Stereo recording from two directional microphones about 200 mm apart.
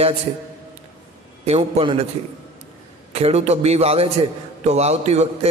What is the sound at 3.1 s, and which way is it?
A man's voice, 30° right (ahead or behind).